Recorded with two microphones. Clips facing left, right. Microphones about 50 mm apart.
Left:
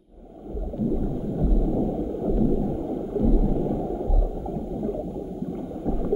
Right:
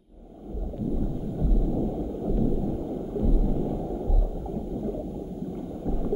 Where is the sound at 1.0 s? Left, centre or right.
Centre.